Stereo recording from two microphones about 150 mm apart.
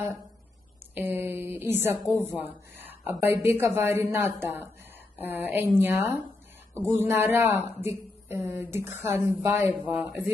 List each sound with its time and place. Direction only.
0.9 s a woman's voice: 15° right (ahead or behind)